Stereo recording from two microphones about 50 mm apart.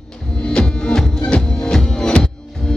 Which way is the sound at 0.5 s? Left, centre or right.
Centre.